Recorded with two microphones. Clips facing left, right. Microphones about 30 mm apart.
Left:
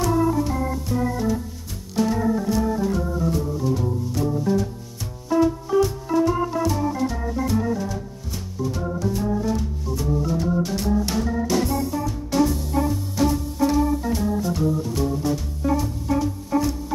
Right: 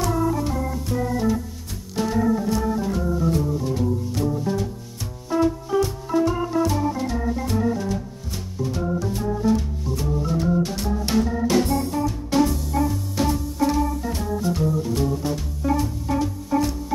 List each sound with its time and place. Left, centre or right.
0.0 s organ: centre
3.3 s music: centre
7.8 s organ: centre
9.1 s music: centre
11.4 s organ: right
12.3 s music: right
12.8 s music: centre
13.1 s music: centre